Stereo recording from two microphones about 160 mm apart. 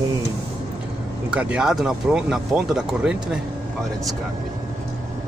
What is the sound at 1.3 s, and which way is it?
Speech, 5° right (ahead or behind).